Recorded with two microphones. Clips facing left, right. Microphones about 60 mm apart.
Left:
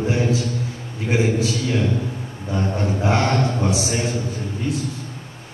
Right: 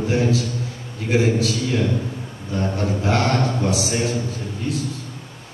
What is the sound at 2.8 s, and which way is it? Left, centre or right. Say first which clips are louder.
A man's voice: left 1 dB; left.